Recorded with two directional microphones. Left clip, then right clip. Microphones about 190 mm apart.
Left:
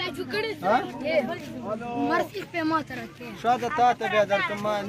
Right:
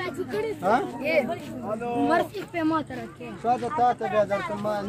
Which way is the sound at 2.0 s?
30° right (ahead or behind).